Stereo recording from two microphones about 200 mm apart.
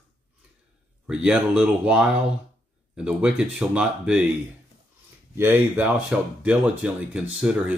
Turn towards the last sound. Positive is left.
turn(degrees=-5)  # may be behind; listen again after turning